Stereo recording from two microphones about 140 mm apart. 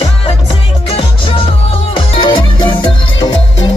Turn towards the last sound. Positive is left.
turn(degrees=35)  # may be behind; listen again after turning